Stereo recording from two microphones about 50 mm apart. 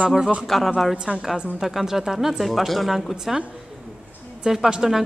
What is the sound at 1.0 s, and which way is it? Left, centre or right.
Speech, right.